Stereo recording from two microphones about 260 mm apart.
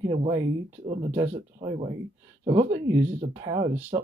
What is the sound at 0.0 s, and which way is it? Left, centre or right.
Speech, centre.